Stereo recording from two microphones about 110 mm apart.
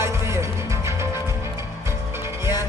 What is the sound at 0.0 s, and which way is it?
Music, 25° right (ahead or behind).